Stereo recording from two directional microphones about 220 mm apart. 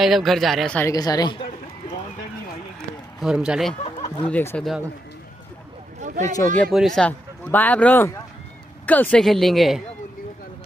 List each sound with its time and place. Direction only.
0.0 s speech: centre (ahead or behind); by 1.4 s 20° left (ahead or behind)
3.2 s speech: 5° right (ahead or behind)
4.3 s speech: 10° left (ahead or behind)
5.9 s a sound: 35° right (ahead or behind)
6.3 s speech: 5° left (ahead or behind)